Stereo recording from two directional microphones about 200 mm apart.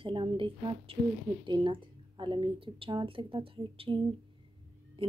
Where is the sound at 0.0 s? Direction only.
25° right (ahead or behind).